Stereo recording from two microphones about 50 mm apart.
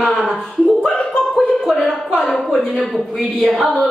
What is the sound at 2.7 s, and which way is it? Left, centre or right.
A woman's voice, centre.